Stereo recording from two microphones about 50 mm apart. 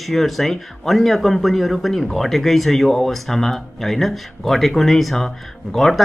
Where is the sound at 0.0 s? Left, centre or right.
Centre.